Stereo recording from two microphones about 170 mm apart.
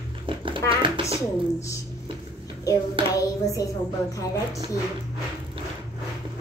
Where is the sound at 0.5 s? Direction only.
30° right (ahead or behind).